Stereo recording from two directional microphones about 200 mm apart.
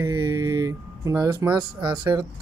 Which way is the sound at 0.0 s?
20° right (ahead or behind).